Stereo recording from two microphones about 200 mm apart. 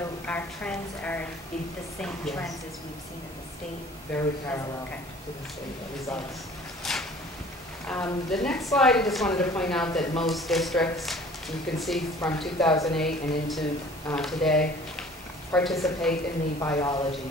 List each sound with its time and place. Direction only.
0.3 s a woman's voice: 5° left (ahead or behind)
4.1 s a woman's voice: 10° left (ahead or behind)
6.8 s a sound: centre (ahead or behind)
7.8 s speech: 5° left (ahead or behind)
16.5 s a woman's voice: 15° left (ahead or behind)